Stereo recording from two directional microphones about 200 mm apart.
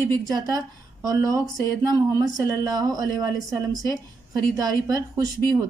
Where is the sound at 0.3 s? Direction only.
20° right (ahead or behind).